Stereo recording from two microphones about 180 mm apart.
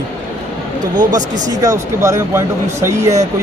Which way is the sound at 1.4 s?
20° right (ahead or behind).